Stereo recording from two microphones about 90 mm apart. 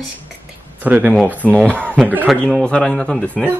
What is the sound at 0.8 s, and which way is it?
Speech, 15° right (ahead or behind).